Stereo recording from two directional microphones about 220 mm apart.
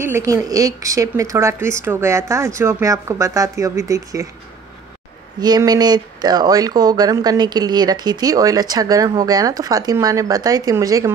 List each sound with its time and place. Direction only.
0.0 s speech: 15° right (ahead or behind)
5.4 s speech: 20° right (ahead or behind)